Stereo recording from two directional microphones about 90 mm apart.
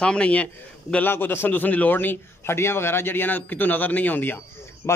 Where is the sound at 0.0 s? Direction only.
10° left (ahead or behind).